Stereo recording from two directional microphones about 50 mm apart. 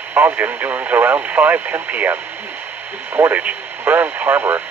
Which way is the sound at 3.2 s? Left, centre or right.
Right.